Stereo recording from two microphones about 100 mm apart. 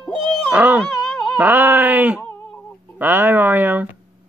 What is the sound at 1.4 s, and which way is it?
Speech, 20° right (ahead or behind).